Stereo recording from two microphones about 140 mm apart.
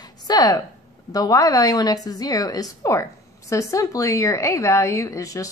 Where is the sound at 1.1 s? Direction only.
25° left (ahead or behind).